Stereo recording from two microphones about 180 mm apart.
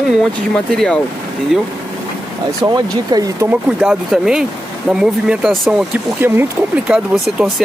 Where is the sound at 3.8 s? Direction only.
5° right (ahead or behind).